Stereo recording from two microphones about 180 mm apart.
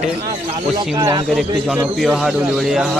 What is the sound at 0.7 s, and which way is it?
Speech, 20° right (ahead or behind).